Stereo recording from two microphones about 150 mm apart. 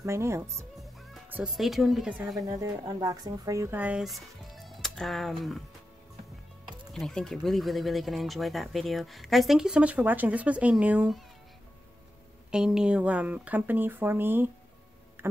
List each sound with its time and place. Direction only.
0.0 s speech: 20° right (ahead or behind)
1.3 s speech: 5° right (ahead or behind)
2.4 s speech: 20° right (ahead or behind); by 5.6 s centre (ahead or behind)
6.9 s speech: 5° left (ahead or behind)
12.4 s speech: 5° right (ahead or behind)